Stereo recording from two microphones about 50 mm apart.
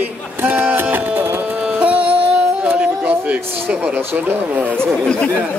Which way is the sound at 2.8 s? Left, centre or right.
Right.